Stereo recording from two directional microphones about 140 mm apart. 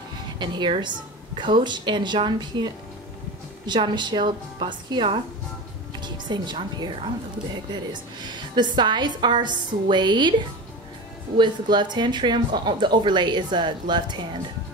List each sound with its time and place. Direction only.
0.4 s a woman's voice: 30° right (ahead or behind)
11.3 s speech: 35° right (ahead or behind)